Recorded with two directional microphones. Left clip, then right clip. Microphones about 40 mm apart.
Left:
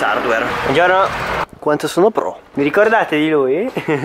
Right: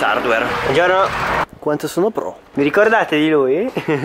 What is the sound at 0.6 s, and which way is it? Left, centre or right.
Speech, centre.